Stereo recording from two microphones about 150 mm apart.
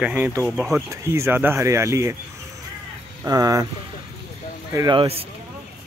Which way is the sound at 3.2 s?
25° right (ahead or behind).